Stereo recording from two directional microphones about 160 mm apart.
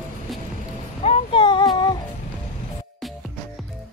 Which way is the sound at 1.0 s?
35° left (ahead or behind).